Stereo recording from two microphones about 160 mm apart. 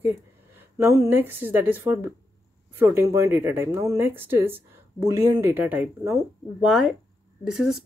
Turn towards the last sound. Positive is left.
turn(degrees=-5)  # may be behind; listen again after turning